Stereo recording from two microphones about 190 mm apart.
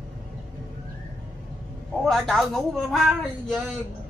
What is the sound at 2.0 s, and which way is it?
Speech, centre (ahead or behind).